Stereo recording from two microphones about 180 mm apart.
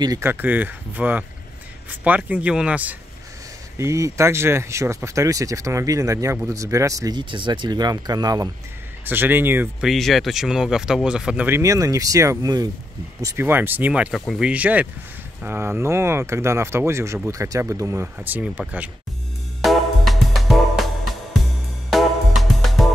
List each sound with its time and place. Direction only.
0.0 s speech: 15° right (ahead or behind)
19.6 s music: centre (ahead or behind)